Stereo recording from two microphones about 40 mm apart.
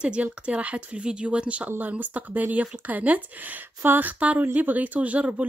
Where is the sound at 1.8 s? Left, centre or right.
Right.